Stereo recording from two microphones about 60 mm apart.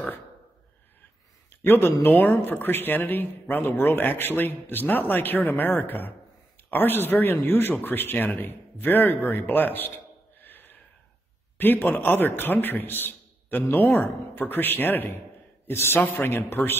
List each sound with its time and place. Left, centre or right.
1.7 s speech: left
10.4 s a sound: left
11.5 s a man's voice: left